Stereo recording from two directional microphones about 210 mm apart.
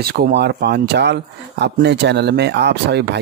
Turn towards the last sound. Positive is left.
turn(degrees=-55)  # may be behind; listen again after turning